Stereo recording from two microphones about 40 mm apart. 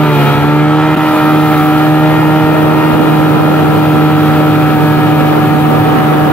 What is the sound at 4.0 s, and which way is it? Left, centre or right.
Vehicle, left.